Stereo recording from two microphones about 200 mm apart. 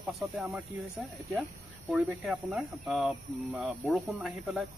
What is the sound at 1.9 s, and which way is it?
Speech, 5° right (ahead or behind).